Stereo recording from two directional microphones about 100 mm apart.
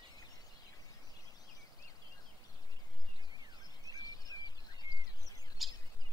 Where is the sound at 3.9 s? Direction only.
40° left (ahead or behind).